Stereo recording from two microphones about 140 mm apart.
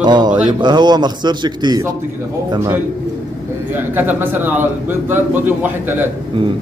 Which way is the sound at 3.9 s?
15° right (ahead or behind).